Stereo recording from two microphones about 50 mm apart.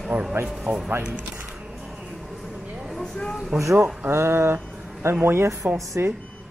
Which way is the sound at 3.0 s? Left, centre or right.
Centre.